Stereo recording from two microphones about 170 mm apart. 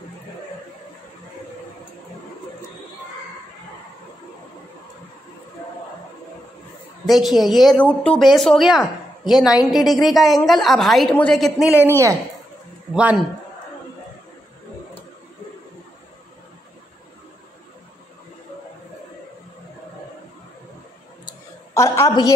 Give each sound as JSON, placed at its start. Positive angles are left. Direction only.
{"t": 7.1, "sound": "speech", "side_deg": 0}
{"t": 11.7, "sound": "a woman's voice", "side_deg": 15}
{"t": 12.9, "sound": "speech", "side_deg": -5}
{"t": 21.3, "sound": "a sound", "side_deg": 15}